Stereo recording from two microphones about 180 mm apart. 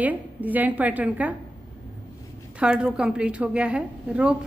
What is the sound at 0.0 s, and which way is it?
A woman's voice, 10° right (ahead or behind).